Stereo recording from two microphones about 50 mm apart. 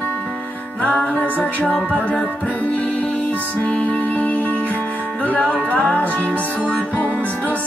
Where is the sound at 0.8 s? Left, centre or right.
Left.